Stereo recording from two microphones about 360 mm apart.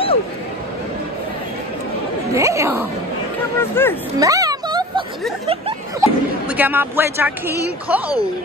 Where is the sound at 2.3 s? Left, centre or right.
Centre.